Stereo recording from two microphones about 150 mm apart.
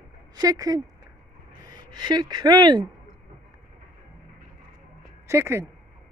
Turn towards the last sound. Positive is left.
turn(degrees=-15)  # may be behind; listen again after turning